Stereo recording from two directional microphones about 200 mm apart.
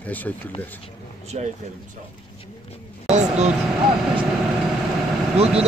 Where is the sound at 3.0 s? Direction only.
35° right (ahead or behind).